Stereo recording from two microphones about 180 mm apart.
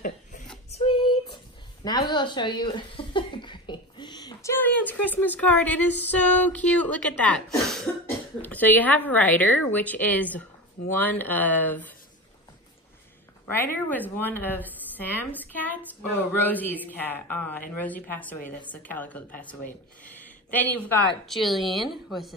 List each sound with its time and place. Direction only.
0.0 s a sound: 45° left (ahead or behind)
0.7 s child singing: 30° left (ahead or behind)
1.9 s speech: 25° left (ahead or behind)
13.5 s speech: 10° left (ahead or behind)